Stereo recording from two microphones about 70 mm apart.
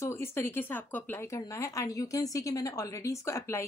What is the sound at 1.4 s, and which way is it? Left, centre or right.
A woman's voice, left.